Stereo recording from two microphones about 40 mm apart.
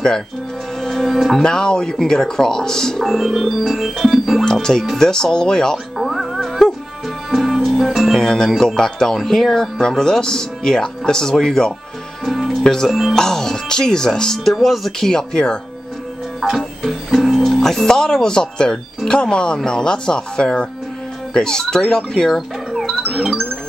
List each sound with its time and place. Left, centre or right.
0.7 s music: centre
1.1 s organ: centre
1.4 s speech: centre
3.1 s organ: centre
4.5 s speech: centre
5.9 s music: centre
8.2 s speech: centre
12.3 s music: centre
12.6 s speech: centre
14.9 s speech: centre
16.3 s speech: centre
17.6 s speech: centre
22.8 s music: centre